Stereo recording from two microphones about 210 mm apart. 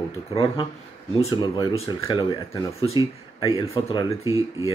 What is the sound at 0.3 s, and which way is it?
Speech, 25° left (ahead or behind).